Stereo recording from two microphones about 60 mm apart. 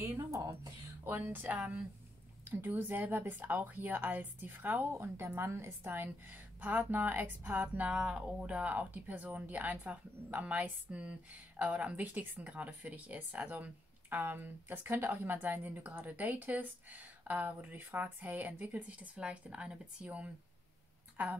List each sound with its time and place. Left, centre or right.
0.3 s speech: right
1.0 s a woman's voice: right
4.9 s a woman's voice: right
7.9 s a woman's voice: centre